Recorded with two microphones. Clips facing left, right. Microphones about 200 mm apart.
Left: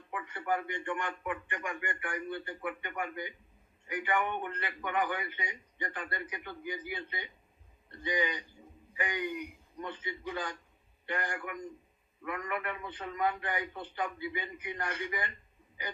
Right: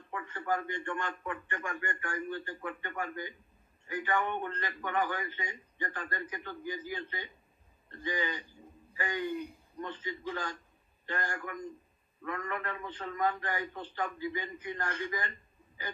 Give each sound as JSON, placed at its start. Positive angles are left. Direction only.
{"t": 0.1, "sound": "a man's voice", "side_deg": 15}